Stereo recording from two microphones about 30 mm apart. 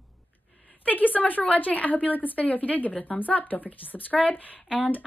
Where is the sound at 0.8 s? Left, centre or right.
Left.